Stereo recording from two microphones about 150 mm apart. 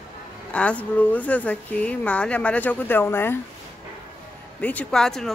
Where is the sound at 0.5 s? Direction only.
10° left (ahead or behind).